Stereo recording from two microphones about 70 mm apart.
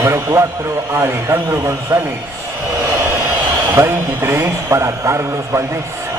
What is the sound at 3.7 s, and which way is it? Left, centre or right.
A man's voice, right.